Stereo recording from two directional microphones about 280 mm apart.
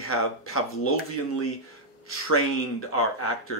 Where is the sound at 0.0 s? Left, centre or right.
Left.